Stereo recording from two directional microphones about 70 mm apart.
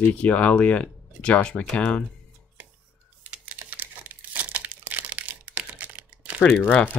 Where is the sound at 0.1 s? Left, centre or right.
Centre.